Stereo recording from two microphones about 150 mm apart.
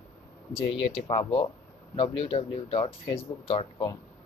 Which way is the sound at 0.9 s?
40° left (ahead or behind).